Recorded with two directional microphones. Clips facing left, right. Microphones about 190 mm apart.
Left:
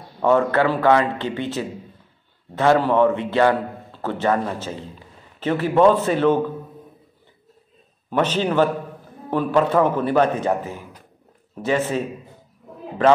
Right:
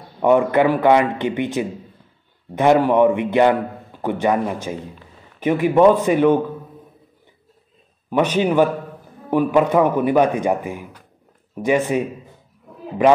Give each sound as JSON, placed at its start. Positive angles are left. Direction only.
{"t": 0.2, "sound": "a man's voice", "side_deg": -15}
{"t": 8.1, "sound": "a man's voice", "side_deg": -10}